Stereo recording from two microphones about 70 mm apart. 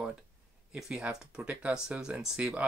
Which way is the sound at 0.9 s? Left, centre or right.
Centre.